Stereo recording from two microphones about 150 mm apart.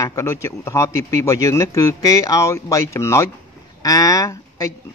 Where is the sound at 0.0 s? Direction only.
20° left (ahead or behind).